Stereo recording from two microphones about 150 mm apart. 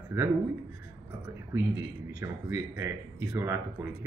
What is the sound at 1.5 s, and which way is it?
Speech, 15° right (ahead or behind).